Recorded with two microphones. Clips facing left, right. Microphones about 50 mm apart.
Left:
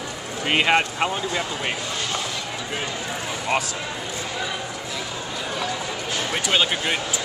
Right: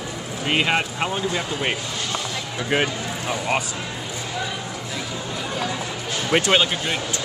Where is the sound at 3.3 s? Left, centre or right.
Centre.